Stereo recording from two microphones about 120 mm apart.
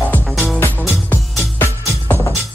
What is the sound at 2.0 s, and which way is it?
Music, 20° left (ahead or behind).